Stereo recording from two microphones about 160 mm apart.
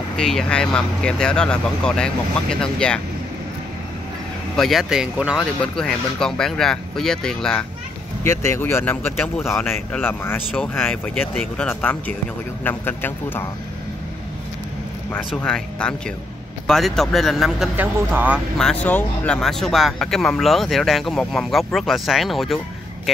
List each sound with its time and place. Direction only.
0.2 s speech: 5° left (ahead or behind)
4.6 s speech: centre (ahead or behind)
8.2 s speech: 20° left (ahead or behind)
9.4 s speech: centre (ahead or behind)
9.7 s speech: 15° left (ahead or behind)
15.1 s speech: 5° left (ahead or behind); by 18.4 s 10° right (ahead or behind)
18.6 s speech: 5° left (ahead or behind)